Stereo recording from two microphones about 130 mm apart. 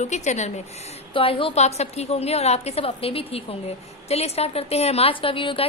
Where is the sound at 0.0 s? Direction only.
65° left (ahead or behind).